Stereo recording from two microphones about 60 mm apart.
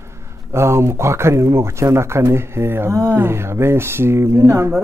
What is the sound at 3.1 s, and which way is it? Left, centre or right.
Speech, right.